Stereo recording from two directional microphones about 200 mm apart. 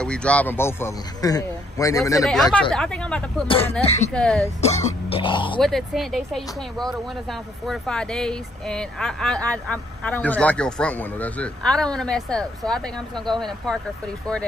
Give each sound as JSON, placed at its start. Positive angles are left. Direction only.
{"t": 0.0, "sound": "a man's voice", "side_deg": 5}
{"t": 2.2, "sound": "speech", "side_deg": 0}
{"t": 3.8, "sound": "speech", "side_deg": 35}
{"t": 4.1, "sound": "speech", "side_deg": 5}
{"t": 4.6, "sound": "speech", "side_deg": 35}
{"t": 5.6, "sound": "speech", "side_deg": 0}